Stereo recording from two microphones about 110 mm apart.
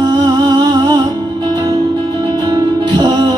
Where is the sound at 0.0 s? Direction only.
35° right (ahead or behind).